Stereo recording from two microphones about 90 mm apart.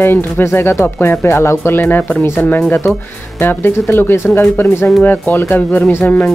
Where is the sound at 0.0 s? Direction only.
25° left (ahead or behind).